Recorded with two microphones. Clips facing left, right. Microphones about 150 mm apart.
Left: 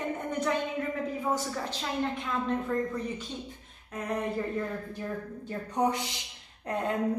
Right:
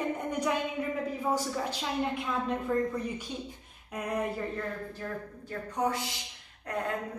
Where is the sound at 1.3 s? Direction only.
10° right (ahead or behind).